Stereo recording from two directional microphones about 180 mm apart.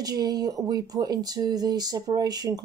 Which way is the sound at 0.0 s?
20° right (ahead or behind).